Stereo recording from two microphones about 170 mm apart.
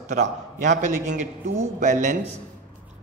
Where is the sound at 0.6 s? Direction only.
50° right (ahead or behind).